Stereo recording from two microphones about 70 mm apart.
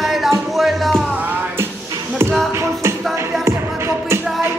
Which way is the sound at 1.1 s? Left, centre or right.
Right.